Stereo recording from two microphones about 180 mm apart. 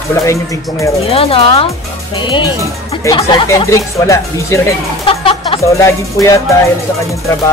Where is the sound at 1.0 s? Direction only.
30° left (ahead or behind).